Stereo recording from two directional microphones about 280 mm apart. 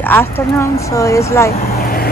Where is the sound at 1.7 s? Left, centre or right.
Left.